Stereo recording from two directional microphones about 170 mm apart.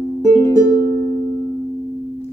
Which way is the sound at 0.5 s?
20° left (ahead or behind).